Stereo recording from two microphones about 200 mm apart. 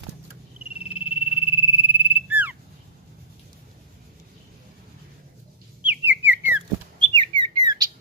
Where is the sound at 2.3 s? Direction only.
10° right (ahead or behind).